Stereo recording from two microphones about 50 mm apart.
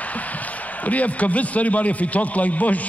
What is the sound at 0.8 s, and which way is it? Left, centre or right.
Speech, left.